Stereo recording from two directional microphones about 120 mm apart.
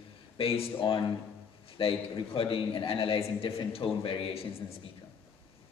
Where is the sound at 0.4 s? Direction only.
50° left (ahead or behind).